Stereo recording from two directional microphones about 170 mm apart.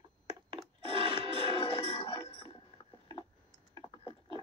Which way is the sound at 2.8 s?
25° left (ahead or behind).